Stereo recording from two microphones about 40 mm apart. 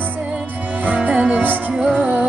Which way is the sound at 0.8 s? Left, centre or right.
Right.